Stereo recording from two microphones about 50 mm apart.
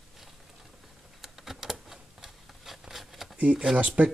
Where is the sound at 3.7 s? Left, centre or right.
Right.